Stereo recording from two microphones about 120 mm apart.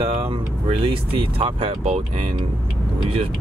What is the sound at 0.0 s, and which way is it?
Speech, 50° right (ahead or behind).